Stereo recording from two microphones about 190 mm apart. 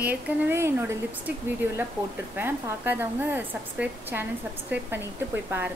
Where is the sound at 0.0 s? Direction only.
10° right (ahead or behind).